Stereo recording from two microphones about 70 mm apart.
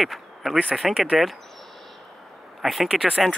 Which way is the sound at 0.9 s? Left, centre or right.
Centre.